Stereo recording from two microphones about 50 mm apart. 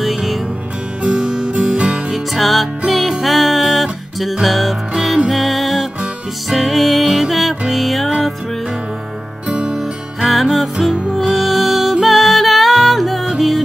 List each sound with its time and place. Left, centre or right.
0.0 s music: centre
1.0 s music: centre
2.1 s music: centre
9.5 s music: right
9.8 s music: centre